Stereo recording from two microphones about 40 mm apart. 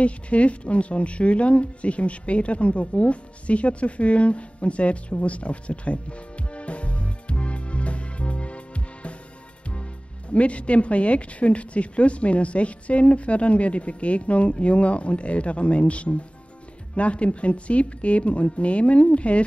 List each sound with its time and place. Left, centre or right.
0.0 s speech: left
10.3 s speech: left